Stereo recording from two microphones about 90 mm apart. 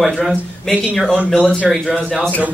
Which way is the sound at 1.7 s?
10° right (ahead or behind).